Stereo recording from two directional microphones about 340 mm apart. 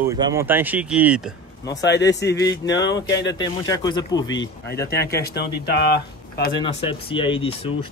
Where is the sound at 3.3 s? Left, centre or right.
Centre.